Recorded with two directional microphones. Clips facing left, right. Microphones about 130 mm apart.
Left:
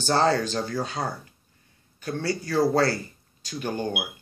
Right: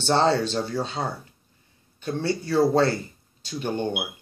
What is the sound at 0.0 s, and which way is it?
Speech, 25° right (ahead or behind).